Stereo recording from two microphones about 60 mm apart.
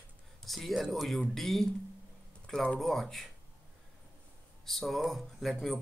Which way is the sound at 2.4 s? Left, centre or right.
Centre.